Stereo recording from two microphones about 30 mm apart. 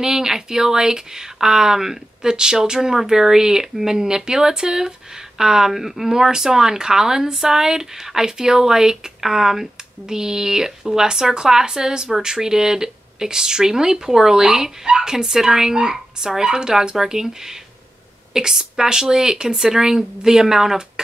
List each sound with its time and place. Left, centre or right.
0.0 s speech: centre
5.7 s speech: centre